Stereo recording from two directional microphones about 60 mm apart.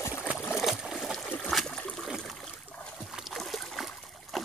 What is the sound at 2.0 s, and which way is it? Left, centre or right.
Water, centre.